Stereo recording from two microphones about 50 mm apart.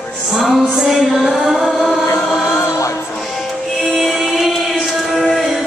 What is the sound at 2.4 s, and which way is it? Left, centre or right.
Chant, left.